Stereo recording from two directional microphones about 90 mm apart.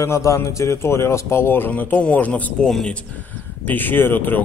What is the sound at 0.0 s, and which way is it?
A man's voice, 35° left (ahead or behind).